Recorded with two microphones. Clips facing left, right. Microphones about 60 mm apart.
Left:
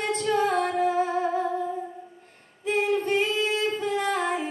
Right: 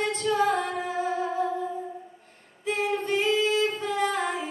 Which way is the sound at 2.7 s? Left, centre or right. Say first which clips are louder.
Left 3 dB; left.